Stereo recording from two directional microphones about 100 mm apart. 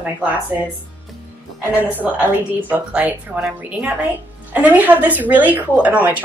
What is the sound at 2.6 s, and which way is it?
A woman's voice, 15° right (ahead or behind).